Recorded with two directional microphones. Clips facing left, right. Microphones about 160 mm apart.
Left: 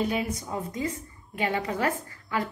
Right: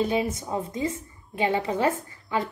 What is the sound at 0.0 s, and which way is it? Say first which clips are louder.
A woman's voice: right 3 dB; 25° right (ahead or behind).